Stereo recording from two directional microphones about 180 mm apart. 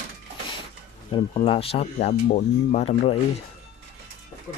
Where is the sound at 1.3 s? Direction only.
30° left (ahead or behind).